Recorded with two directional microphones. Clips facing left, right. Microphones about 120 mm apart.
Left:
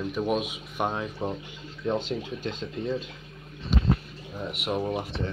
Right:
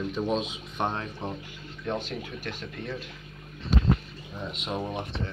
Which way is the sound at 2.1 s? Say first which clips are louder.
Left 4 dB; 20° left (ahead or behind).